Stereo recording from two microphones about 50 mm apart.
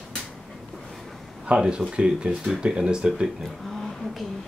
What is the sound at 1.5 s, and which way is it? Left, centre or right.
Speech, centre.